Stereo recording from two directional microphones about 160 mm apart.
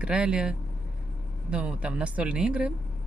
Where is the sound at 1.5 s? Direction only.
10° right (ahead or behind).